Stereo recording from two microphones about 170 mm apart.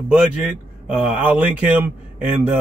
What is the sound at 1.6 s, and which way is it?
Speech, 10° right (ahead or behind).